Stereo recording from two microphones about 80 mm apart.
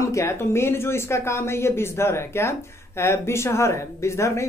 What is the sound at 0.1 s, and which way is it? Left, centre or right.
Speech, left.